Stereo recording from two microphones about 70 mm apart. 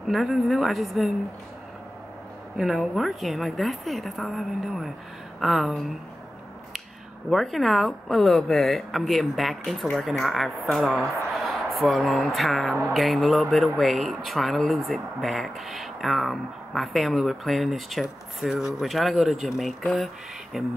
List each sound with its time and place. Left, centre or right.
0.1 s speech: centre
2.5 s speech: centre
7.2 s speech: centre